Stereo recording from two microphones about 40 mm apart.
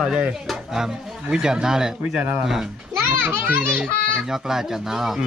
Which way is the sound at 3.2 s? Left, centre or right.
Right.